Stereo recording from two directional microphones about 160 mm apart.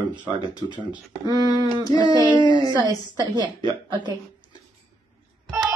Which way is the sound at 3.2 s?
25° right (ahead or behind).